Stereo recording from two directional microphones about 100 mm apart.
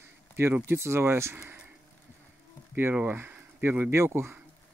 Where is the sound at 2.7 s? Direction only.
20° right (ahead or behind).